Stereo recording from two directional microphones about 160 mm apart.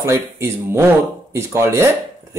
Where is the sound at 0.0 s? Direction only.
15° right (ahead or behind).